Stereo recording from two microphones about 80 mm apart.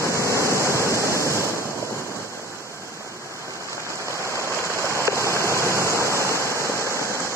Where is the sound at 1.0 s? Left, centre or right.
Right.